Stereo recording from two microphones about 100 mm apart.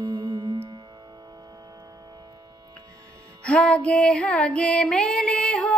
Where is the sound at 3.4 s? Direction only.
10° left (ahead or behind).